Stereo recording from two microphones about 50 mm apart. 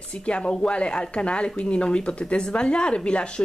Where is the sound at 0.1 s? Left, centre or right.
Left.